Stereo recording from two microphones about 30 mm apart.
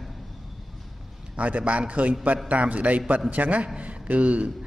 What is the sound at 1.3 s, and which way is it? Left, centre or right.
A man's voice, right.